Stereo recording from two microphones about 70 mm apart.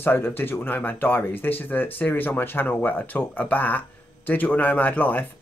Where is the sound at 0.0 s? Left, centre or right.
Left.